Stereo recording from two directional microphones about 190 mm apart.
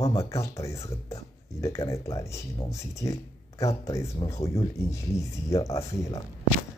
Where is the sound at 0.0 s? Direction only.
15° left (ahead or behind).